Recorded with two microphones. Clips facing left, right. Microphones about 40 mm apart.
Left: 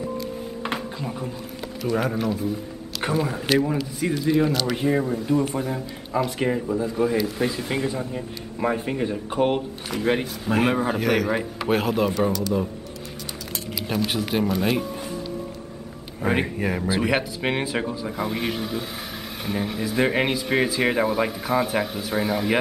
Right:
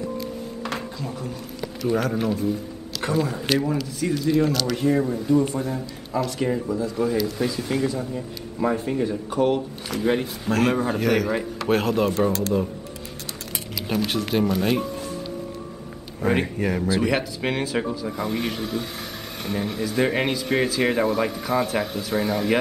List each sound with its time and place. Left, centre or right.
0.9 s speech: left
2.1 s speech: centre
3.0 s speech: centre; by 9.6 s left
9.8 s speech: centre
12.3 s speech: right
13.7 s speech: centre
16.2 s speech: centre